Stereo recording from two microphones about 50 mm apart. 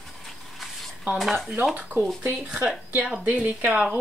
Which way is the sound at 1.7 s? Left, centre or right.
Right.